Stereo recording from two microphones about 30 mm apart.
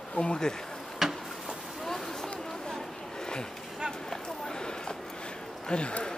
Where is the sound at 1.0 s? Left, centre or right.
Centre.